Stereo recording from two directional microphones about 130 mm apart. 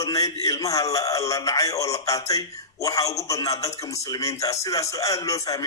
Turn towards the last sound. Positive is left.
turn(degrees=25)  # may be behind; listen again after turning